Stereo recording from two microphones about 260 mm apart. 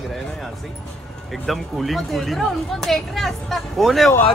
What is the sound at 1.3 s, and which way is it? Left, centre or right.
Speech, centre.